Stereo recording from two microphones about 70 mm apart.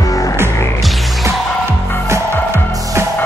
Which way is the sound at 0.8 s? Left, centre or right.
Centre.